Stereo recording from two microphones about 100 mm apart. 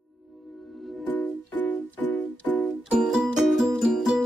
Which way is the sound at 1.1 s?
20° left (ahead or behind).